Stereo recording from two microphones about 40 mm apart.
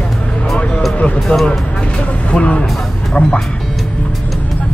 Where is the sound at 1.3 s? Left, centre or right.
Left.